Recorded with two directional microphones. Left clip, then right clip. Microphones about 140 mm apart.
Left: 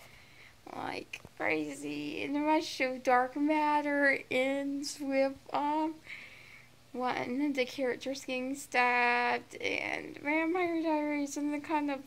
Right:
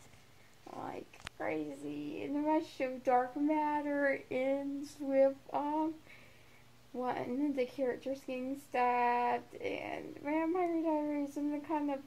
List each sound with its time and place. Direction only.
0.7 s a sound: 20° left (ahead or behind)
3.4 s a woman's voice: 25° left (ahead or behind)
7.1 s a woman's voice: 10° left (ahead or behind)